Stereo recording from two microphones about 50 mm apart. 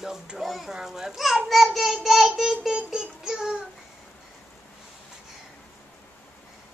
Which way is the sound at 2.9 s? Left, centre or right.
Centre.